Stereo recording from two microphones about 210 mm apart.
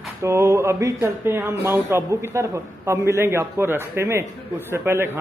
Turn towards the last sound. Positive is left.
turn(degrees=-10)  # may be behind; listen again after turning